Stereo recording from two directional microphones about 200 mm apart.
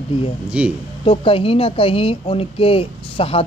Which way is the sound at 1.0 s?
25° left (ahead or behind).